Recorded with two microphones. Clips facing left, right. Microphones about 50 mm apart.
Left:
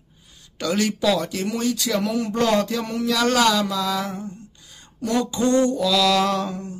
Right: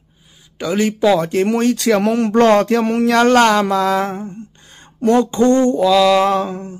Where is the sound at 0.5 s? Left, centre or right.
Right.